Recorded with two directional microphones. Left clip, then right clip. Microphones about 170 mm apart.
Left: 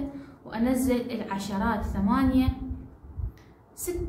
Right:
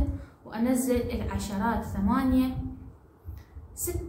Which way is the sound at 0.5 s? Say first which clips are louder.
Left 1 dB; 5° left (ahead or behind).